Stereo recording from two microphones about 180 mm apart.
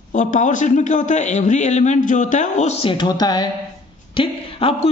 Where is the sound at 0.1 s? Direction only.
45° left (ahead or behind).